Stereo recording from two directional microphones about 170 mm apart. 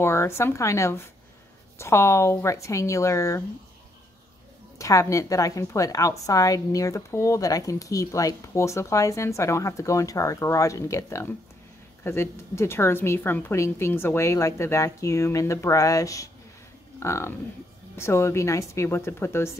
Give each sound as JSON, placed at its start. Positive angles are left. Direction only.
{"t": 0.0, "sound": "a woman's voice", "side_deg": 15}
{"t": 4.7, "sound": "a woman's voice", "side_deg": 20}